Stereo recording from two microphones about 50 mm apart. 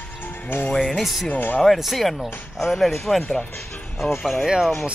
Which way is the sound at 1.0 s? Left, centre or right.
Centre.